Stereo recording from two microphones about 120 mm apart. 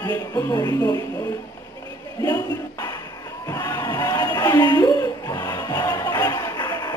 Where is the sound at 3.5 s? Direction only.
30° left (ahead or behind).